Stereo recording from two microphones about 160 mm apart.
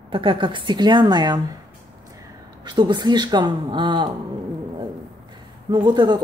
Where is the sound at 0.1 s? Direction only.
30° right (ahead or behind).